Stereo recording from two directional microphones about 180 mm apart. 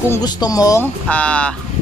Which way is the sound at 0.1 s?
20° left (ahead or behind).